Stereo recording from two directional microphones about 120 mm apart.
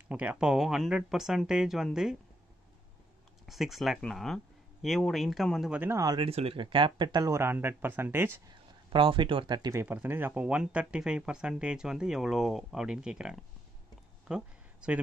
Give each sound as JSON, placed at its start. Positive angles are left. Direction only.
{"t": 0.1, "sound": "speech", "side_deg": -10}
{"t": 3.4, "sound": "speech", "side_deg": 0}
{"t": 5.7, "sound": "speech", "side_deg": -15}
{"t": 5.9, "sound": "speech", "side_deg": -30}
{"t": 6.2, "sound": "speech", "side_deg": -50}
{"t": 7.2, "sound": "speech", "side_deg": -20}
{"t": 8.5, "sound": "speech", "side_deg": -45}
{"t": 9.8, "sound": "speech", "side_deg": -15}
{"t": 14.2, "sound": "a sound", "side_deg": -5}